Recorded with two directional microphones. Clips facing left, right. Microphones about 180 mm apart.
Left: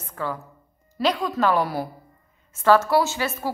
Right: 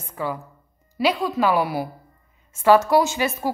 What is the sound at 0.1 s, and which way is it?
A woman's voice, 10° right (ahead or behind).